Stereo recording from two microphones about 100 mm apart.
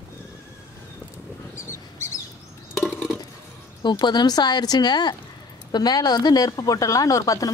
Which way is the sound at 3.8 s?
45° left (ahead or behind).